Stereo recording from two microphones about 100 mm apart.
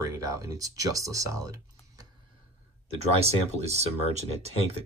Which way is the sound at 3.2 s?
90° right.